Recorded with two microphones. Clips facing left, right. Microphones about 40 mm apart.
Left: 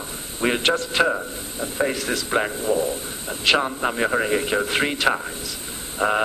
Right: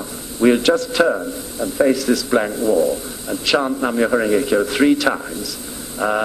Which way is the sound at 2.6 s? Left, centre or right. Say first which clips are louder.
Right 6 dB; right.